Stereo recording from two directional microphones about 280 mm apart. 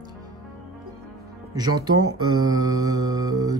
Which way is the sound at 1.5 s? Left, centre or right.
Centre.